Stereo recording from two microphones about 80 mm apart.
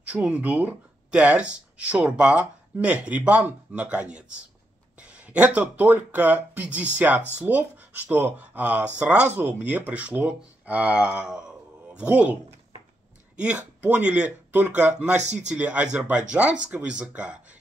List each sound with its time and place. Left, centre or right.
0.0 s speech: centre
13.4 s speech: centre